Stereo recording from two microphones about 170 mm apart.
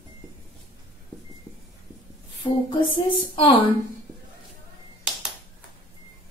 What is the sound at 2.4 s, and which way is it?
Speech, 30° left (ahead or behind).